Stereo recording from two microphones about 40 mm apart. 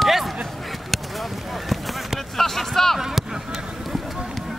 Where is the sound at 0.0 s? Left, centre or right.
Centre.